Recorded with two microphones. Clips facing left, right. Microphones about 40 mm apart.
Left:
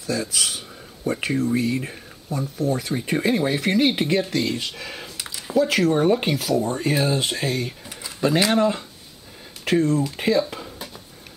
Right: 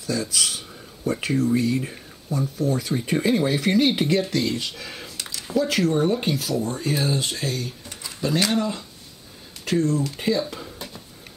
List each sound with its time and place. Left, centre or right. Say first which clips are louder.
0.0 s speech: even; centre
6.3 s speech: left 3 dB; centre; by 8.8 s left
9.7 s speech: left 2 dB; centre
10.1 s a sound: left 3 dB; centre